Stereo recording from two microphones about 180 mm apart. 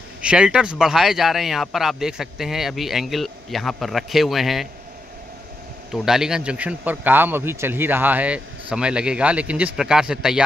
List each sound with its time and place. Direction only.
0.2 s speech: 5° right (ahead or behind)
5.9 s a man's voice: centre (ahead or behind)